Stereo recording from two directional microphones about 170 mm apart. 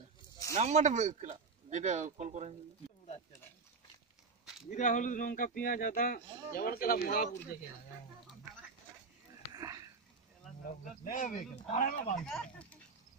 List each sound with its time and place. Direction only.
0.6 s speech: 40° right (ahead or behind)
4.6 s speech: 45° left (ahead or behind)
9.5 s a sound: 20° right (ahead or behind)
10.7 s speech: 50° left (ahead or behind)
12.2 s speech: centre (ahead or behind)